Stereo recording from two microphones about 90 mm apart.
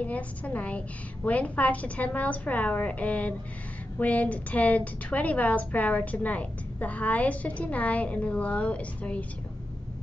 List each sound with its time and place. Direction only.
0.0 s a woman's voice: 15° left (ahead or behind)